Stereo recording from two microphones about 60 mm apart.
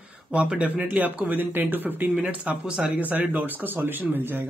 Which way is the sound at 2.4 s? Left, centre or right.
Centre.